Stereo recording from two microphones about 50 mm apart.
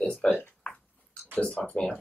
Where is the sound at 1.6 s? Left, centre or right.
Left.